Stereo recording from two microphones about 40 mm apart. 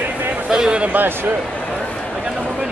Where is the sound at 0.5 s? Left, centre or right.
Centre.